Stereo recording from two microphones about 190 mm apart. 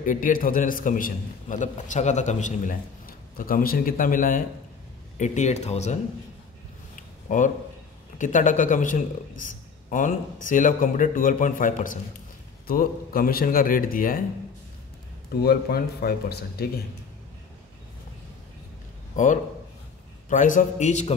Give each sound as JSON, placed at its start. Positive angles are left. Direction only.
{"t": 0.0, "sound": "a man's voice", "side_deg": 45}
{"t": 7.2, "sound": "a man's voice", "side_deg": 40}
{"t": 15.4, "sound": "speech", "side_deg": 55}
{"t": 19.1, "sound": "a man's voice", "side_deg": 40}